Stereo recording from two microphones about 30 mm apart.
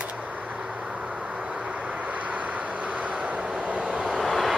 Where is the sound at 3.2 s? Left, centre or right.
Right.